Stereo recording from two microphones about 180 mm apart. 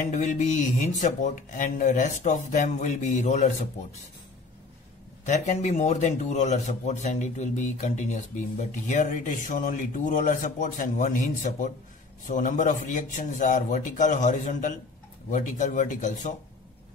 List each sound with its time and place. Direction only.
0.0 s speech: 45° left (ahead or behind)
5.2 s speech: 40° left (ahead or behind)